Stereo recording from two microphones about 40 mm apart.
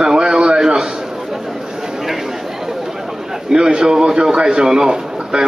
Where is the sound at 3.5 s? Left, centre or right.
Centre.